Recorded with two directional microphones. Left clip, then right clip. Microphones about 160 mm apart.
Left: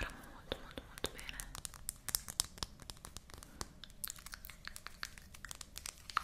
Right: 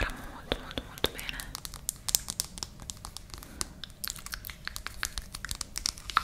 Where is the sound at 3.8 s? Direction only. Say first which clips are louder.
Right 10 dB; 5° right (ahead or behind).